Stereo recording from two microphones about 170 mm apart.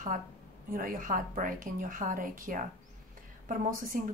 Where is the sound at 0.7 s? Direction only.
55° right (ahead or behind).